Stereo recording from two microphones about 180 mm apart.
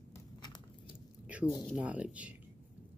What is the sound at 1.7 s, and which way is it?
Speech, 5° right (ahead or behind).